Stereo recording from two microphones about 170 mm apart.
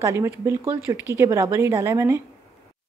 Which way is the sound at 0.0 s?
15° right (ahead or behind).